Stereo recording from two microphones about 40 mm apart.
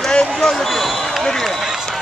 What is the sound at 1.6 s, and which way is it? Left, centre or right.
Run, centre.